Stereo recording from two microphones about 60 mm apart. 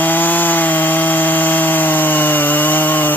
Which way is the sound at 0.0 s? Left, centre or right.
Left.